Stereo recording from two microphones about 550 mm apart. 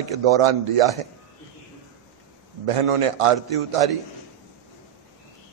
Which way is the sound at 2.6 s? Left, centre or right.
Right.